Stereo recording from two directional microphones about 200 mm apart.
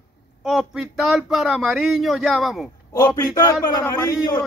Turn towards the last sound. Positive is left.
turn(degrees=20)  # may be behind; listen again after turning